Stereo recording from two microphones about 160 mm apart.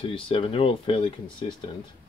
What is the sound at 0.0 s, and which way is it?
Speech, 35° left (ahead or behind).